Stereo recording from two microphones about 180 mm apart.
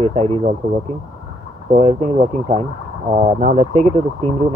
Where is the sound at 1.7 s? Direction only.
40° right (ahead or behind).